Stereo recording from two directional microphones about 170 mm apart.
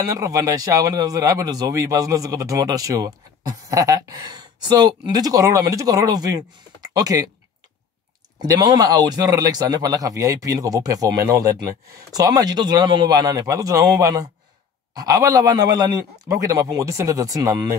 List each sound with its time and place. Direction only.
0.0 s speech: 20° right (ahead or behind)
8.4 s speech: 25° right (ahead or behind)